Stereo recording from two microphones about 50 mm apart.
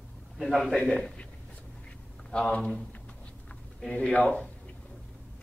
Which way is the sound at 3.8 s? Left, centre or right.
Left.